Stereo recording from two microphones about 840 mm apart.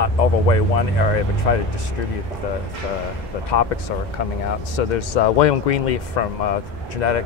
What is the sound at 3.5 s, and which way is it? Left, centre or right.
Speech, left.